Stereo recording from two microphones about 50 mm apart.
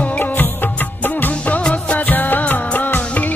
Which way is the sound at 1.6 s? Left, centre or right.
Left.